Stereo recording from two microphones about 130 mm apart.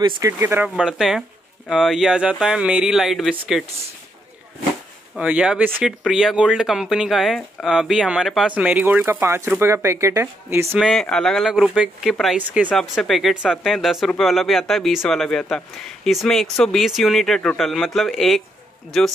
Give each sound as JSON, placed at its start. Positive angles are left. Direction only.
{"t": 0.2, "sound": "speech", "side_deg": -15}
{"t": 5.1, "sound": "speech", "side_deg": -10}
{"t": 10.8, "sound": "speech", "side_deg": 5}